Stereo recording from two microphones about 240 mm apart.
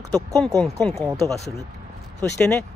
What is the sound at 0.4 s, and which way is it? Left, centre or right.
Speech, centre.